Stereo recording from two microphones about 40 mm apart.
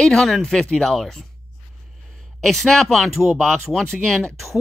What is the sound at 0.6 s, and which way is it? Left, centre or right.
Speech, centre.